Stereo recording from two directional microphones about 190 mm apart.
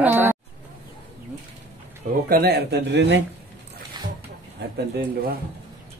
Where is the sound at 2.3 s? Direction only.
55° right (ahead or behind).